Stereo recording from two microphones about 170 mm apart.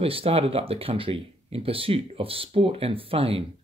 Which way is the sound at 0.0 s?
35° right (ahead or behind).